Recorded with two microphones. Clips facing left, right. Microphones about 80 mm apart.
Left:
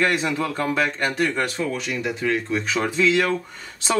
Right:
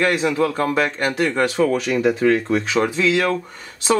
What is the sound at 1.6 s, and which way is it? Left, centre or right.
Speech, right.